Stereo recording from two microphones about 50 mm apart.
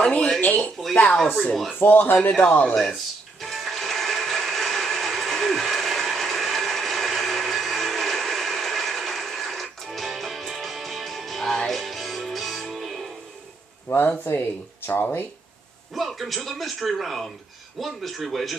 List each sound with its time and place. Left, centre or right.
0.8 s speech: centre
1.8 s speech: left
2.6 s music: centre
13.8 s speech: left
15.9 s speech: centre